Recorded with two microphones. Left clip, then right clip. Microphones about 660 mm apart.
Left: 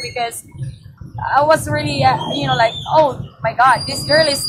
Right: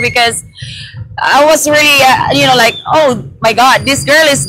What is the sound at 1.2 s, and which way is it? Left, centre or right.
Speech, right.